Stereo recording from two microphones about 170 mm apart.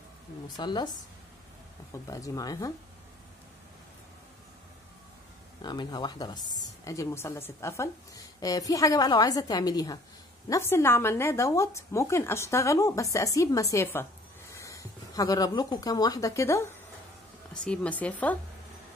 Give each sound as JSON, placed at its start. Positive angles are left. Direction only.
{"t": 0.6, "sound": "a woman's voice", "side_deg": 25}
{"t": 2.0, "sound": "a woman's voice", "side_deg": 20}
{"t": 5.6, "sound": "a woman's voice", "side_deg": 25}
{"t": 17.6, "sound": "speech", "side_deg": 5}